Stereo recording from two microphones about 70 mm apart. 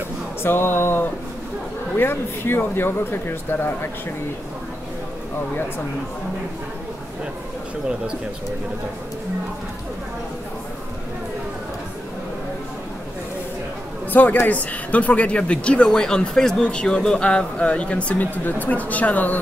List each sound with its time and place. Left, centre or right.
0.4 s speech: left
14.1 s speech: left